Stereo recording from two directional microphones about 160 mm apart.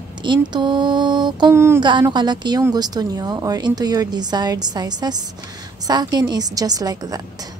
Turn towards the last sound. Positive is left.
turn(degrees=-25)  # may be behind; listen again after turning